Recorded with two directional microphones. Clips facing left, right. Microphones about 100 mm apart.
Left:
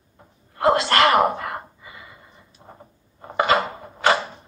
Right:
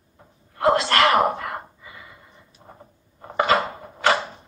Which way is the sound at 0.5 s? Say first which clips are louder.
Left 1 dB; 35° left (ahead or behind).